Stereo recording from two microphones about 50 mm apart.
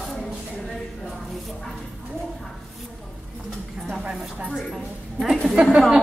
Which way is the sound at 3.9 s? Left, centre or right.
Centre.